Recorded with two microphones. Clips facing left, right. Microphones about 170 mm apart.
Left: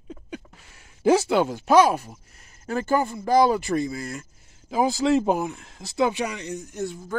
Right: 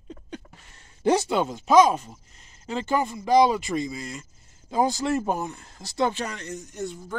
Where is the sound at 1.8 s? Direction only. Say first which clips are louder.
Left 1 dB; 5° left (ahead or behind).